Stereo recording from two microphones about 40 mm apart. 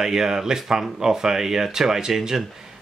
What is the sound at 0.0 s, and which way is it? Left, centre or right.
Speech, centre.